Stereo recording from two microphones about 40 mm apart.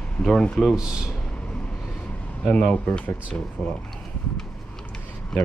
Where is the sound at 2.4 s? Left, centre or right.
Left.